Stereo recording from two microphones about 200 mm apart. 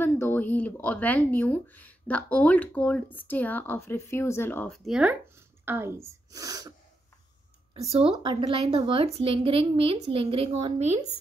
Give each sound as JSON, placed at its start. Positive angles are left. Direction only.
{"t": 0.0, "sound": "speech", "side_deg": 10}
{"t": 5.7, "sound": "speech", "side_deg": -10}
{"t": 7.9, "sound": "speech", "side_deg": -30}